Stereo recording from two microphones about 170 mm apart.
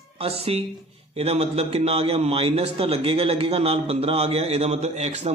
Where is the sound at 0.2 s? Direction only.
35° right (ahead or behind).